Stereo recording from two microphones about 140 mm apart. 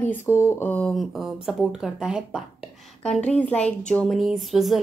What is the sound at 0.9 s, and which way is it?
A woman's voice, centre (ahead or behind).